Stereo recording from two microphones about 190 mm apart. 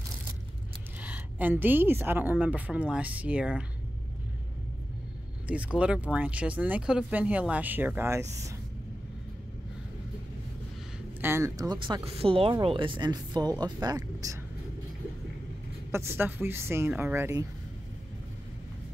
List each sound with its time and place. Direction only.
1.0 s speech: 10° right (ahead or behind)
5.5 s speech: 5° right (ahead or behind)
11.1 s speech: 10° right (ahead or behind)
15.9 s speech: 15° right (ahead or behind)